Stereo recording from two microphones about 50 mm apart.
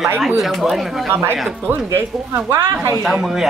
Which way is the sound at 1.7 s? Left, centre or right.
Right.